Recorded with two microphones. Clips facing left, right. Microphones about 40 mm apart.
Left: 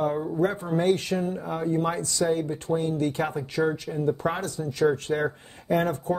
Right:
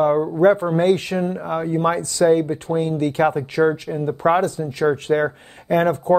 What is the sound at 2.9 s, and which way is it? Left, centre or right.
Speech, right.